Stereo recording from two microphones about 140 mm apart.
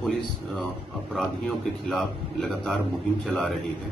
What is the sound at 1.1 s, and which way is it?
A man's voice, centre (ahead or behind).